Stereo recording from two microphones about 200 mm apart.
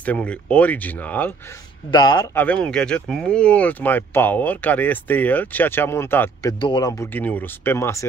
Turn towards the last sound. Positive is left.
turn(degrees=10)  # may be behind; listen again after turning